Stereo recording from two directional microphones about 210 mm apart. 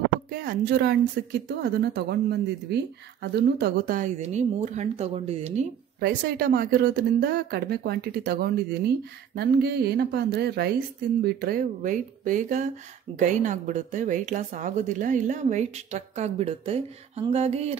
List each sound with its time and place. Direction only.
0.3 s speech: 45° right (ahead or behind)
5.9 s speech: 45° right (ahead or behind); by 17.7 s 30° right (ahead or behind)